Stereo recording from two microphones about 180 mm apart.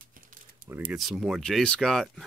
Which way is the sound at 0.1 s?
50° right (ahead or behind).